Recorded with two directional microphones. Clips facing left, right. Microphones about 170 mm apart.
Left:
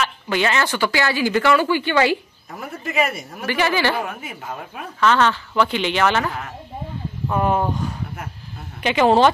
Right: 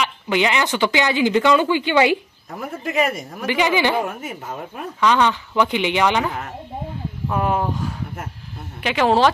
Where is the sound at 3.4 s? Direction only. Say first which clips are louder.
Right 1 dB; 15° right (ahead or behind).